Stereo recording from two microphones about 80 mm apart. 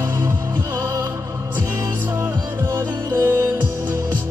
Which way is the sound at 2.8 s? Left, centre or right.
Right.